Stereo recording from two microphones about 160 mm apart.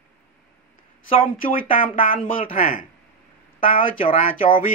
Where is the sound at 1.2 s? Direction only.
60° left (ahead or behind).